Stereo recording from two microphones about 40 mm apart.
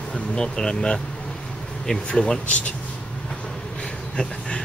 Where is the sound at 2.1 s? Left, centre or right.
Left.